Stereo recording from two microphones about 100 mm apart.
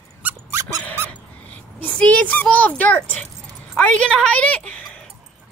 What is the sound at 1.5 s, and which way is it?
A child's voice, 15° left (ahead or behind).